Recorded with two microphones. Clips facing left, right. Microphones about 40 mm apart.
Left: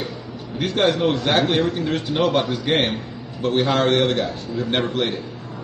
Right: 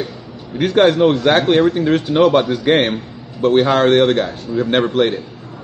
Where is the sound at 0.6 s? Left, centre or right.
Centre.